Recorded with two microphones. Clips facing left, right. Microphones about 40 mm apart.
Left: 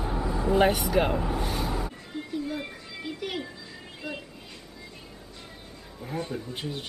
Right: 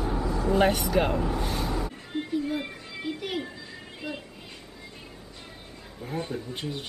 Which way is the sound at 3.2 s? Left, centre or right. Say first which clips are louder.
Left 1 dB; centre.